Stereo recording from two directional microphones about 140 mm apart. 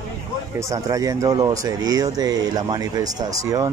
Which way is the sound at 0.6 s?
25° right (ahead or behind).